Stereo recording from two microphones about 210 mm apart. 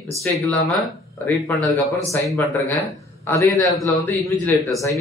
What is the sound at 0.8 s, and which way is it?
Speech, 10° left (ahead or behind).